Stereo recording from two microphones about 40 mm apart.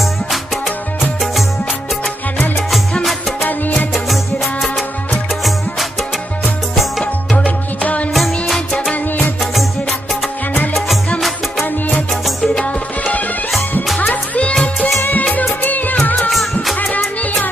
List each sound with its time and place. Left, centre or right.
3.0 s music: centre
6.7 s music: centre
7.3 s music: left
8.1 s music: centre
11.1 s music: centre
13.9 s music: left
15.6 s music: left
16.3 s music of bollywood: centre
16.9 s music: left